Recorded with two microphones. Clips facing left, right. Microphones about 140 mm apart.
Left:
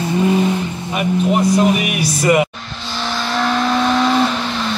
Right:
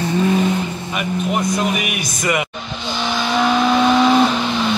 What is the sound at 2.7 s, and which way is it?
Vehicle, centre (ahead or behind).